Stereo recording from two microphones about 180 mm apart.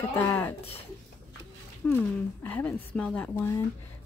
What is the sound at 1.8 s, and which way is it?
Speech, 10° left (ahead or behind).